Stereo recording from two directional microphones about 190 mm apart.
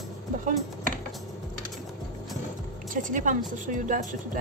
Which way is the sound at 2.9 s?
45° right (ahead or behind).